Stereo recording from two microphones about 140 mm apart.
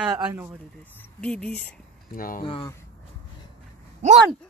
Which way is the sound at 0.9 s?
10° left (ahead or behind).